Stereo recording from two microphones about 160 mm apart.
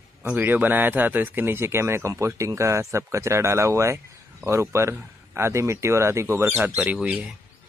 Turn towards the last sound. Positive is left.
turn(degrees=-10)  # may be behind; listen again after turning